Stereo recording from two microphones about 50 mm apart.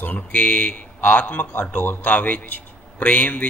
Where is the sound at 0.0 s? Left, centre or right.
Left.